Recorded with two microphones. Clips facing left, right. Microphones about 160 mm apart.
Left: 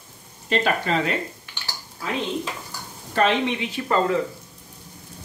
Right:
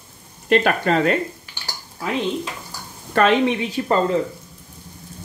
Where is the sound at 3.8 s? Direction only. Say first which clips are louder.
Right 5 dB; 35° right (ahead or behind).